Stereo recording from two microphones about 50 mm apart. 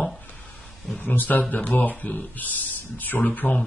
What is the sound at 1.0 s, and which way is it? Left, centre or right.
Speech, left.